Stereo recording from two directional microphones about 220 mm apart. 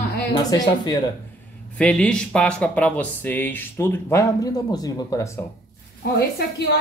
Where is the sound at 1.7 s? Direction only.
5° left (ahead or behind).